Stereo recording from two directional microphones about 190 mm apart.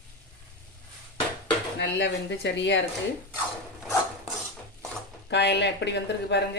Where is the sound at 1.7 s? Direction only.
65° left (ahead or behind).